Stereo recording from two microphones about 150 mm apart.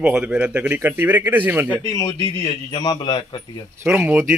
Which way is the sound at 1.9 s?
25° left (ahead or behind).